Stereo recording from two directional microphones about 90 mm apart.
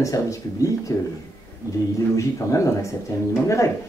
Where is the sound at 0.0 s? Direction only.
35° left (ahead or behind).